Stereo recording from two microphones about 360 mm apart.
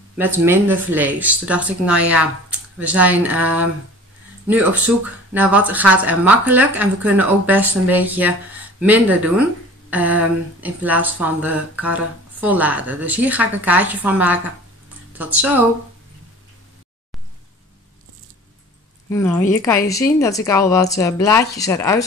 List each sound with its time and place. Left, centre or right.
0.2 s speech: centre
19.0 s speech: centre